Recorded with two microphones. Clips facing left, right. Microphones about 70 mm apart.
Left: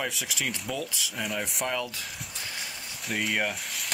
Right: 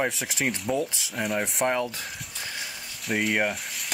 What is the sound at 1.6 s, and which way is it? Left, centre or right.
Speech, right.